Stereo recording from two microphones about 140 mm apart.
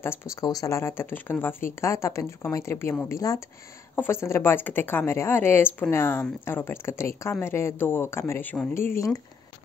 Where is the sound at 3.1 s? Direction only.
25° left (ahead or behind).